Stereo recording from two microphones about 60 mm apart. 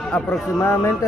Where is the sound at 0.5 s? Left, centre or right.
Left.